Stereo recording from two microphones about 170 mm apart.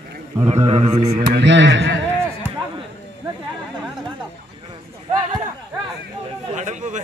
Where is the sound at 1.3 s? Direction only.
90° right.